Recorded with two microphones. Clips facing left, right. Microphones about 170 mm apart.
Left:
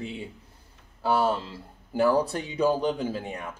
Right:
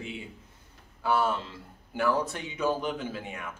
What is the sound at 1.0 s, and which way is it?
A man's voice, 35° left (ahead or behind).